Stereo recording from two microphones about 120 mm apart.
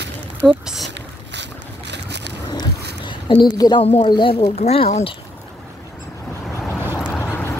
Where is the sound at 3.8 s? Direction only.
55° left (ahead or behind).